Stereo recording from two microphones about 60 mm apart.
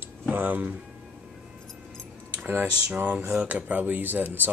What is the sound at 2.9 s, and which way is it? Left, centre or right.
Speech, right.